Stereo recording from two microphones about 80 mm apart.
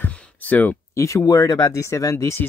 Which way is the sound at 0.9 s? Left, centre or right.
Left.